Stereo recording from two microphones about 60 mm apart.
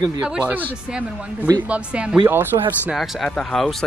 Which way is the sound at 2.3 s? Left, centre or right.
Right.